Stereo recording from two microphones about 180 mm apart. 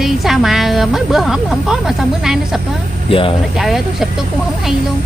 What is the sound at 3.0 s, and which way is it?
Speech, 30° left (ahead or behind).